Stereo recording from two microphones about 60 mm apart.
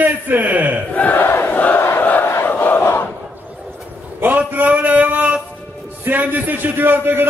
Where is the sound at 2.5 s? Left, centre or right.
Left.